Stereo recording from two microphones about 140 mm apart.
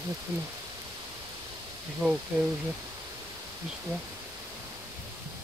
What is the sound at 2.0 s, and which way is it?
Speech, 5° right (ahead or behind).